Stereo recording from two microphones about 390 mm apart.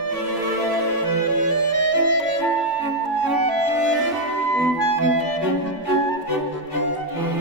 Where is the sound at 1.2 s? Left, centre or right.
Right.